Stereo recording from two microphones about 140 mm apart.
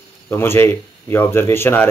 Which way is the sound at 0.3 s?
15° left (ahead or behind).